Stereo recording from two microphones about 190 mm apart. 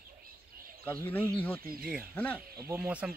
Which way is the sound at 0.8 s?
10° left (ahead or behind).